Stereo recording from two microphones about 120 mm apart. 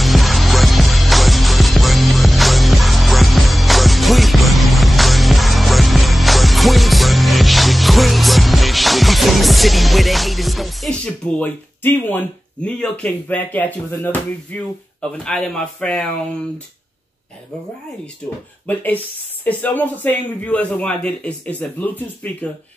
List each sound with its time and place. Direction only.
0.0 s music: centre (ahead or behind)
12.6 s speech: 10° left (ahead or behind)
18.7 s speech: 15° left (ahead or behind)